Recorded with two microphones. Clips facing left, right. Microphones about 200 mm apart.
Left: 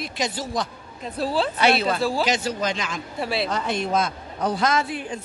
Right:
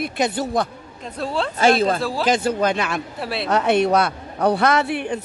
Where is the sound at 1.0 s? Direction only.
5° left (ahead or behind).